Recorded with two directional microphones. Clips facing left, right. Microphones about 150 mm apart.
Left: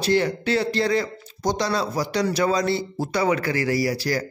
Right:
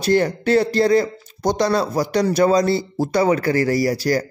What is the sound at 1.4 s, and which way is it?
A man's voice, 55° right (ahead or behind).